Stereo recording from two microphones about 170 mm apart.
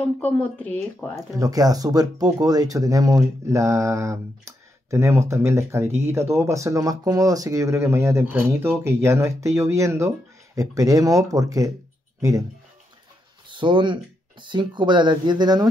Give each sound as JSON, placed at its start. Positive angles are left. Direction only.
{"t": 0.2, "sound": "speech", "side_deg": 10}
{"t": 1.3, "sound": "speech", "side_deg": -20}
{"t": 13.5, "sound": "speech", "side_deg": -30}